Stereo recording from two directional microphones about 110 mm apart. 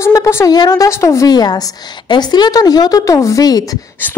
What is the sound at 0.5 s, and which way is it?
A woman's voice, 35° left (ahead or behind).